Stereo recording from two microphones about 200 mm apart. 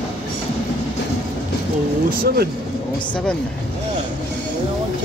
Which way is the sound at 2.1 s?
50° right (ahead or behind).